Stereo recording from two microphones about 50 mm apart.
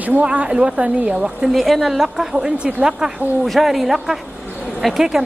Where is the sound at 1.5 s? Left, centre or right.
Centre.